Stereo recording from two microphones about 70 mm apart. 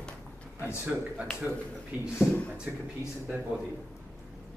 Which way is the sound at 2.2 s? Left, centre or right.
Centre.